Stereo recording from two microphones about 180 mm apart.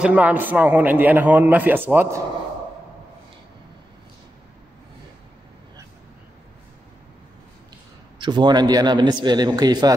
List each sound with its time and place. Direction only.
0.0 s a man's voice: 10° right (ahead or behind)
8.2 s a man's voice: 25° right (ahead or behind)